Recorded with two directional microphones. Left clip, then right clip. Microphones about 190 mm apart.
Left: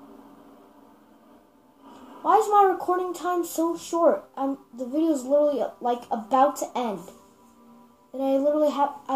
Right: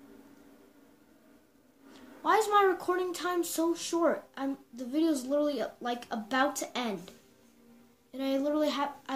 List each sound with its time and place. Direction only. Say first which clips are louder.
2.2 s speech: left 6 dB; 40° right (ahead or behind)
8.2 s speech: left 8 dB; 35° right (ahead or behind)